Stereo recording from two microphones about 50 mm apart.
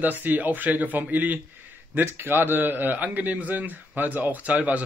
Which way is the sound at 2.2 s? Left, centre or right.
Right.